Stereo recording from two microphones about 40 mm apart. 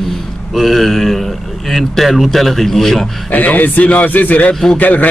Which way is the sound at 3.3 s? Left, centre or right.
Left.